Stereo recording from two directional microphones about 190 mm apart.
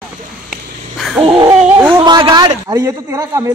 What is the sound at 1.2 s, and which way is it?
A man's voice, 25° right (ahead or behind).